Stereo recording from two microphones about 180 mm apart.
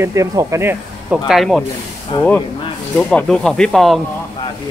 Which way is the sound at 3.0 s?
5° left (ahead or behind).